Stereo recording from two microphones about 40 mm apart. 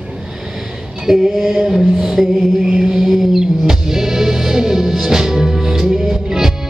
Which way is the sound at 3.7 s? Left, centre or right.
Centre.